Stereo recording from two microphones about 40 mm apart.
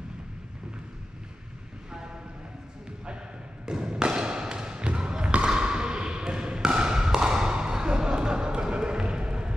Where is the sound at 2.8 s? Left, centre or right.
Right.